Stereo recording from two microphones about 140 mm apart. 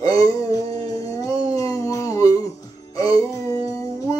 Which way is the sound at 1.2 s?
25° left (ahead or behind).